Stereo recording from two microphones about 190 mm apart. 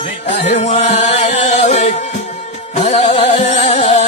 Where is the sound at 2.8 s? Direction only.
35° left (ahead or behind).